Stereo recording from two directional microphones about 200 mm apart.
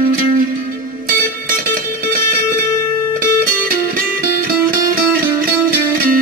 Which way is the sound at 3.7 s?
45° right (ahead or behind).